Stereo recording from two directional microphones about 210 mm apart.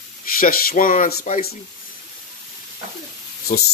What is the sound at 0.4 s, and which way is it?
Speech, 45° left (ahead or behind).